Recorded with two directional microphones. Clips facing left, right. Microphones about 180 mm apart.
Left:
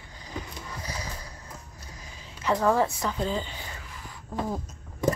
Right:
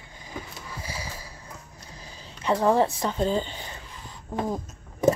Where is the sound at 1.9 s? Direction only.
30° right (ahead or behind).